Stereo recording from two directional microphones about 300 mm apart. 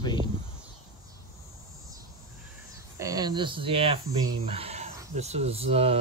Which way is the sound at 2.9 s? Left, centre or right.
Centre.